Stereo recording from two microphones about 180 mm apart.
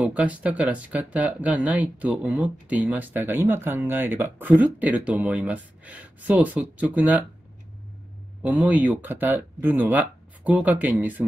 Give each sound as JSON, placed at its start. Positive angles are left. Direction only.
{"t": 0.0, "sound": "speech", "side_deg": -10}
{"t": 8.4, "sound": "speech", "side_deg": -5}